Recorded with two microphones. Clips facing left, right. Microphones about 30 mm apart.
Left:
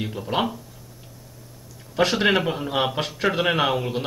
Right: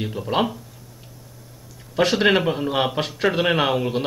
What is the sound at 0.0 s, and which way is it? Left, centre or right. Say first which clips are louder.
Speech: right 2 dB; centre.